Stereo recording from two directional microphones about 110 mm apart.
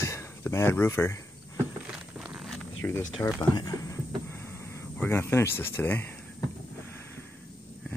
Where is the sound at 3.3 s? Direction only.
40° left (ahead or behind); by 6.0 s 20° left (ahead or behind).